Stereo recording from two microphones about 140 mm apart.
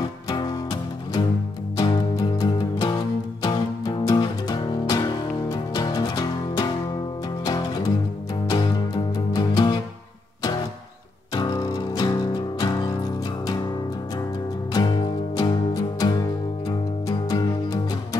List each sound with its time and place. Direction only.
0.3 s music: 30° left (ahead or behind)
8.5 s music: 30° left (ahead or behind)
11.3 s music: 30° left (ahead or behind)
14.7 s music: 30° left (ahead or behind)